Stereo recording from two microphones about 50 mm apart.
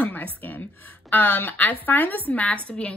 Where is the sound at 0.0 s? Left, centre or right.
Left.